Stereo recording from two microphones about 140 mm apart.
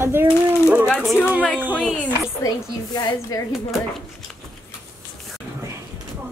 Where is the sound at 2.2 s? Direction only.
25° left (ahead or behind).